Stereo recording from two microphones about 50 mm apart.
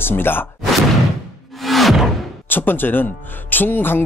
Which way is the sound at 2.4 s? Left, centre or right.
Left.